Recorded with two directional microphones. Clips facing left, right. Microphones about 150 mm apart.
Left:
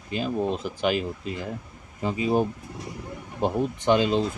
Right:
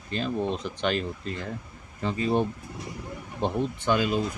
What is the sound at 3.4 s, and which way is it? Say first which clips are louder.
Speech: left 2 dB; 45° left (ahead or behind).